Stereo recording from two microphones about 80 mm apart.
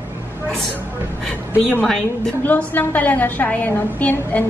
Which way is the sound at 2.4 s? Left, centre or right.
Left.